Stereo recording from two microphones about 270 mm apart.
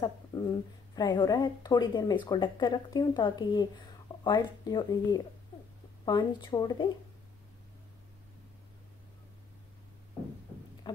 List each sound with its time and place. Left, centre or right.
0.0 s speech: centre